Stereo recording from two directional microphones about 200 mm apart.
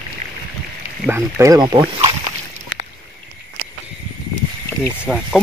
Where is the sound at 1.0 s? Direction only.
10° right (ahead or behind).